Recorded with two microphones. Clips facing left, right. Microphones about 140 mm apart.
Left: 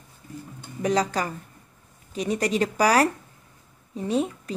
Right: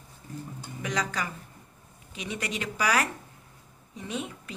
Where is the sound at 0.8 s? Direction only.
35° left (ahead or behind).